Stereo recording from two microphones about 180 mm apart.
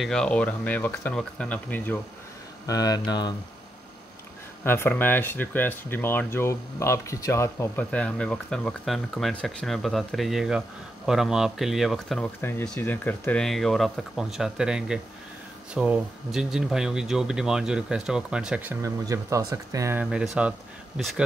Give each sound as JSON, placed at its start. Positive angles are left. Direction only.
{"t": 0.0, "sound": "speech", "side_deg": 5}
{"t": 2.6, "sound": "speech", "side_deg": 20}
{"t": 4.6, "sound": "speech", "side_deg": 10}
{"t": 12.4, "sound": "speech", "side_deg": 10}